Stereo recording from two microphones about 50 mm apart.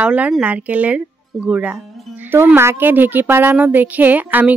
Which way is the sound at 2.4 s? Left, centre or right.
Right.